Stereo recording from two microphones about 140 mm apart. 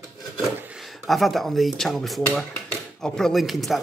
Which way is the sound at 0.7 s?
Centre (ahead or behind).